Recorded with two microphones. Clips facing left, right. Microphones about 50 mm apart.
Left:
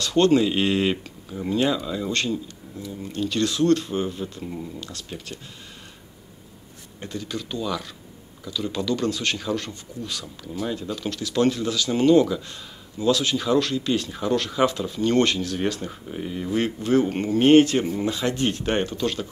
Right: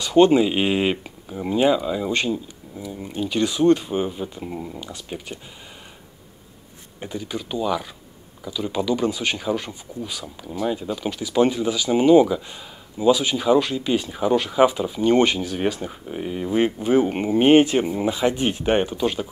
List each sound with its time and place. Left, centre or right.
0.0 s speech: centre
7.0 s speech: centre